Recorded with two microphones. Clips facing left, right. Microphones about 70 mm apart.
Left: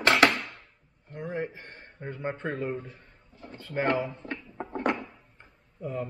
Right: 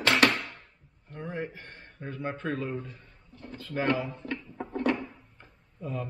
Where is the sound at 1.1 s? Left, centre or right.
Centre.